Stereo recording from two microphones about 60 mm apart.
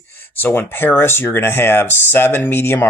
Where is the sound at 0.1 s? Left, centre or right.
Left.